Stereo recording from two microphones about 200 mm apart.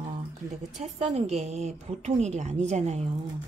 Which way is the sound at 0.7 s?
35° right (ahead or behind).